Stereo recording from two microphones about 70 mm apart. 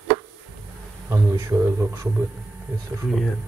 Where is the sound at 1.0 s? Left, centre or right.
Right.